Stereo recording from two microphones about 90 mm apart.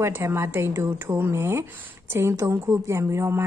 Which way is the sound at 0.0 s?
30° right (ahead or behind).